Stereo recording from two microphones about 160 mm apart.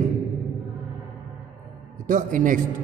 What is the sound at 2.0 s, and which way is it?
Speech, 55° right (ahead or behind).